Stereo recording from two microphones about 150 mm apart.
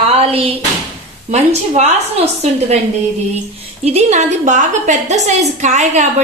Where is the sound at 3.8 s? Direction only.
45° right (ahead or behind).